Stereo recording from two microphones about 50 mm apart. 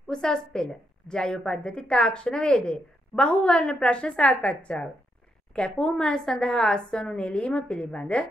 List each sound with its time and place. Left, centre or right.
0.1 s a woman's voice: centre